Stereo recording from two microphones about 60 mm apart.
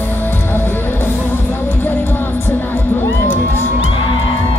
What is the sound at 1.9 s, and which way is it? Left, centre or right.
Music, left.